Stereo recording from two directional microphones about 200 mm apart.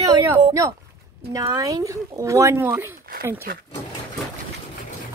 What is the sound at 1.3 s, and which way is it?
Speech, 15° right (ahead or behind).